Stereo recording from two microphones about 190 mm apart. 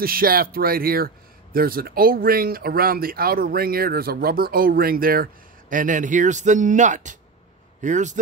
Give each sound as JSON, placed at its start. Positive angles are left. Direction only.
{"t": 0.0, "sound": "speech", "side_deg": -50}